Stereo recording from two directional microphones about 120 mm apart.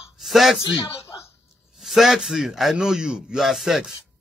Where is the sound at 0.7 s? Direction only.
35° left (ahead or behind).